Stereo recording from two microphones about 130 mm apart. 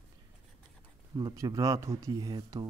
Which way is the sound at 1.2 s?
35° right (ahead or behind).